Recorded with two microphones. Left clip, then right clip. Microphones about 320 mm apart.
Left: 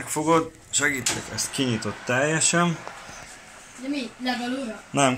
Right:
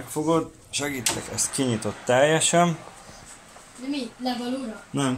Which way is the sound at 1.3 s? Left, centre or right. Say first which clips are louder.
Even; centre.